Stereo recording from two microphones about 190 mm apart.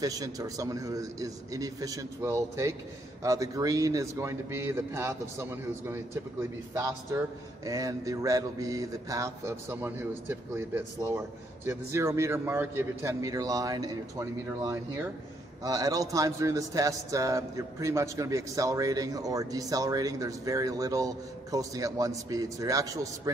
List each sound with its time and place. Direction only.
0.0 s a man's voice: 20° right (ahead or behind)